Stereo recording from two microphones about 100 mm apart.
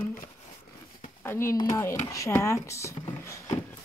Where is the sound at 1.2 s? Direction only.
25° left (ahead or behind).